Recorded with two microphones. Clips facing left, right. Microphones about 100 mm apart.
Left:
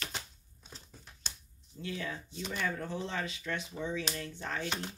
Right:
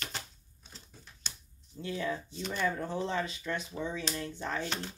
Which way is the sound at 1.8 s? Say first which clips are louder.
Right 4 dB; 25° right (ahead or behind).